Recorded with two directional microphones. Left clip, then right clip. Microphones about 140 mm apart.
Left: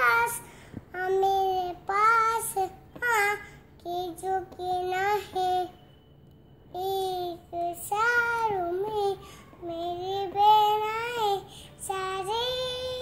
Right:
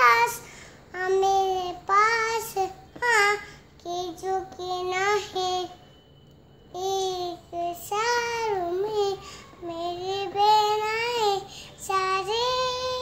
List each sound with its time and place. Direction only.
0.0 s child singing: 20° right (ahead or behind)
6.7 s child singing: 15° right (ahead or behind)